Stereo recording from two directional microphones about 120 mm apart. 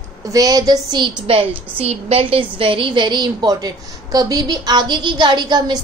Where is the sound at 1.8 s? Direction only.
55° right (ahead or behind); by 5.8 s 35° right (ahead or behind).